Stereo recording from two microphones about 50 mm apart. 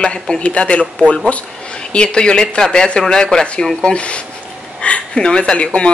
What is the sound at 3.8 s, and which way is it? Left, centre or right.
Speech, left.